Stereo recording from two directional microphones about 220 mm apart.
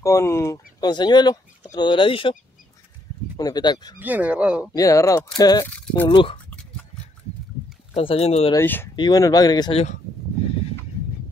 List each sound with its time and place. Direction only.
0.0 s speech: 15° left (ahead or behind)
3.3 s speech: 15° left (ahead or behind)
4.0 s speech: 5° right (ahead or behind)
4.7 s speech: 15° left (ahead or behind)
7.9 s speech: 25° left (ahead or behind)
8.5 s speech: 10° left (ahead or behind); by 9.9 s 25° left (ahead or behind)